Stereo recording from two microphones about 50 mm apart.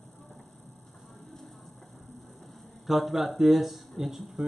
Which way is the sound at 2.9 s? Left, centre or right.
Centre.